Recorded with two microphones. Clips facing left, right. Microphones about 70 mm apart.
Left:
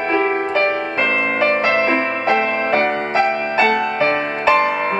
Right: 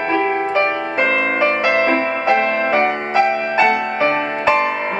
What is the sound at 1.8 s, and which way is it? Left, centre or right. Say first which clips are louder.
Music: right 1 dB; left.